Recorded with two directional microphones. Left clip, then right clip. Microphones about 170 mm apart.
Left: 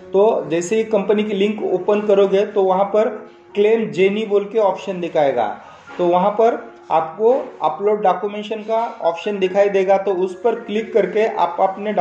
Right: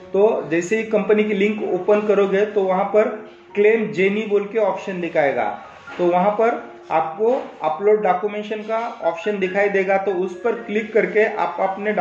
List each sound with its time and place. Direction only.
0.1 s speech: 30° left (ahead or behind)